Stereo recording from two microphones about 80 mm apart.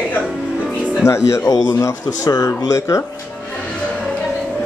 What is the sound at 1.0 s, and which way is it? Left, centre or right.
Speech, left.